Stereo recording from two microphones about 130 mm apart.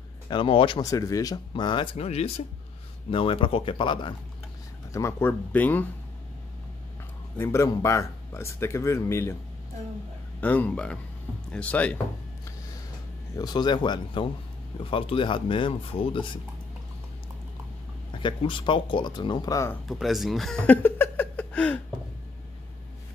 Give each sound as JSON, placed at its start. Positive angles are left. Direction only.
{"t": 0.3, "sound": "speech", "side_deg": 40}
{"t": 0.8, "sound": "speech", "side_deg": 25}
{"t": 1.5, "sound": "speech", "side_deg": 35}
{"t": 2.0, "sound": "speech", "side_deg": 50}
{"t": 4.9, "sound": "speech", "side_deg": 25}
{"t": 7.3, "sound": "speech", "side_deg": 20}
{"t": 10.4, "sound": "speech", "side_deg": 10}
{"t": 13.4, "sound": "speech", "side_deg": 35}
{"t": 18.2, "sound": "speech", "side_deg": 40}
{"t": 19.9, "sound": "speech", "side_deg": 0}
{"t": 20.6, "sound": "a sound", "side_deg": 15}